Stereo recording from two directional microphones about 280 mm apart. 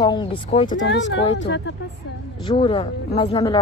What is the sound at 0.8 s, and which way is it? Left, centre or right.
Speech, left.